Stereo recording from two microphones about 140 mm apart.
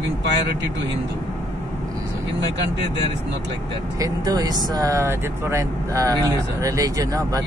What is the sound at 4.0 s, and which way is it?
Speech, 25° right (ahead or behind).